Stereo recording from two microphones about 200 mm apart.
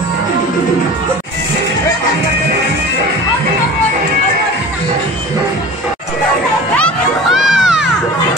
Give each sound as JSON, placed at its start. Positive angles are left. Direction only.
{"t": 6.8, "sound": "crowd", "side_deg": 0}